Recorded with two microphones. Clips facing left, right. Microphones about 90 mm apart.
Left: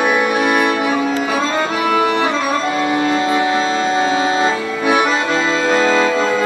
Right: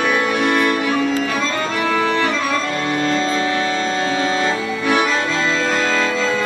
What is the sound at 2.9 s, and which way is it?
Music, 15° left (ahead or behind).